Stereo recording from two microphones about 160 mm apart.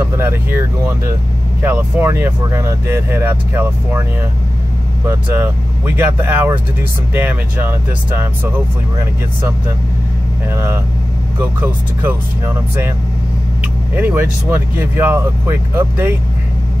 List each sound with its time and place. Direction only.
0.2 s speech: 15° right (ahead or behind)
1.6 s speech: 10° right (ahead or behind)
5.0 s speech: 15° right (ahead or behind)
10.5 s speech: 15° right (ahead or behind)
13.6 s speech: 10° right (ahead or behind)